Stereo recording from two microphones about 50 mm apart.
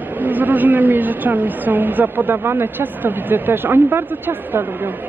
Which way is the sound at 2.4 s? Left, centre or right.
Right.